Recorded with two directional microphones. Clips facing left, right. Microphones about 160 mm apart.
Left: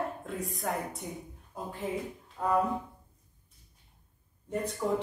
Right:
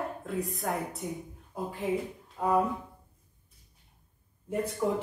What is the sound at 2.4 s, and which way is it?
Speech, 10° right (ahead or behind).